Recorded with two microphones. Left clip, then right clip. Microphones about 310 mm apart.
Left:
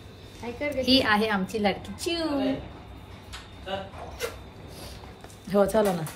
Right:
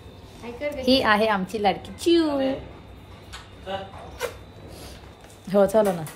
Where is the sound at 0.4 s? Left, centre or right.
Centre.